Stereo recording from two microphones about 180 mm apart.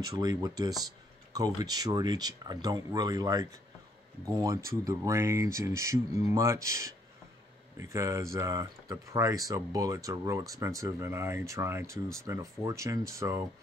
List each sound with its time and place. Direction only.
0.0 s speech: 20° right (ahead or behind)